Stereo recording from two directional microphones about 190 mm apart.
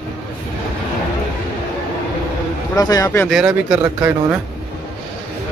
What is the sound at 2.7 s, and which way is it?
Speech, 20° left (ahead or behind).